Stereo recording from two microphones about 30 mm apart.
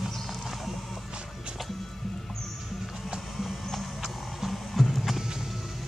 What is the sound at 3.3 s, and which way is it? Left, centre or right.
Music, centre.